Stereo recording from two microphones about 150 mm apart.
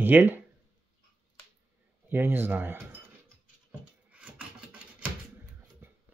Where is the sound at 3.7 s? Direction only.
10° right (ahead or behind).